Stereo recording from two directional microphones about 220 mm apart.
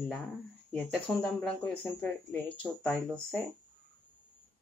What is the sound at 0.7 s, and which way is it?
Speech, centre (ahead or behind).